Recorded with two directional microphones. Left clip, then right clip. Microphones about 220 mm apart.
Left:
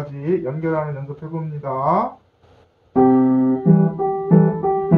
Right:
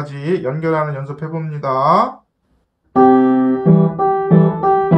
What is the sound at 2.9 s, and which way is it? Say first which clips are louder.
Music: right 4 dB; 55° right (ahead or behind).